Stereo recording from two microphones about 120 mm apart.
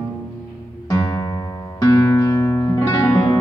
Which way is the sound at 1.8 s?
25° left (ahead or behind).